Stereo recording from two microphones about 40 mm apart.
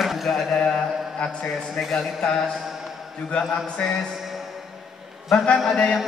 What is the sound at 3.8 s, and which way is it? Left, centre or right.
Speech, centre.